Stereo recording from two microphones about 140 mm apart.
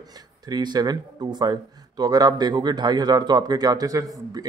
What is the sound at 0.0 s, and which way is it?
Speech, 30° right (ahead or behind).